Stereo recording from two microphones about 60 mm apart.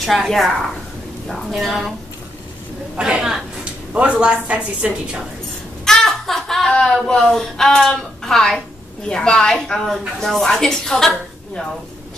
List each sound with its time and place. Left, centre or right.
0.0 s a woman's voice: centre
3.0 s a woman's voice: centre
5.9 s a woman's voice: centre